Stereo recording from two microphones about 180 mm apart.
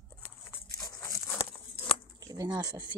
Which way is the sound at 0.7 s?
20° left (ahead or behind).